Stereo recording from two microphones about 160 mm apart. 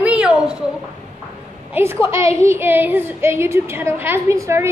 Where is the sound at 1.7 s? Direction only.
15° right (ahead or behind).